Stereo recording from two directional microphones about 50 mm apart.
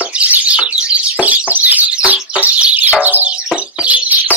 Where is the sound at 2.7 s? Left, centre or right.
Right.